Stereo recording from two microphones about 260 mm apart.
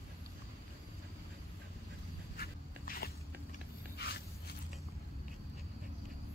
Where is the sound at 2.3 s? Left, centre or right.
Left.